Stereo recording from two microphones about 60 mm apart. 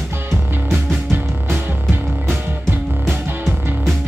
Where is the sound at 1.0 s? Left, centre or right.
Right.